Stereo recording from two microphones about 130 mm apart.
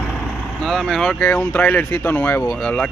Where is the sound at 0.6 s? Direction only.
Centre (ahead or behind).